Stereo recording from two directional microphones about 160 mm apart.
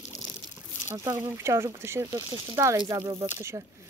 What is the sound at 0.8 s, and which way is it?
Speech, 15° right (ahead or behind).